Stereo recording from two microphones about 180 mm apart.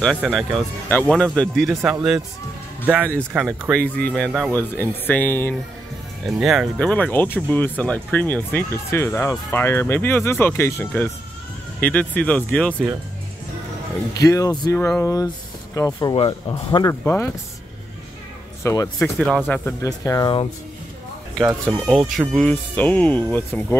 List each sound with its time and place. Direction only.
0.3 s speech: centre (ahead or behind)
3.3 s speech: centre (ahead or behind)
6.2 s speech: centre (ahead or behind)
14.1 s speech: 20° left (ahead or behind)
17.0 s speech: 15° left (ahead or behind)
18.6 s speech: 15° left (ahead or behind)
18.9 s speech: 5° left (ahead or behind); by 20.4 s 25° left (ahead or behind)
21.4 s speech: centre (ahead or behind)